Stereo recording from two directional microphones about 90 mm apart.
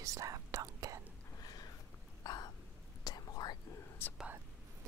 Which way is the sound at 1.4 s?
45° left (ahead or behind).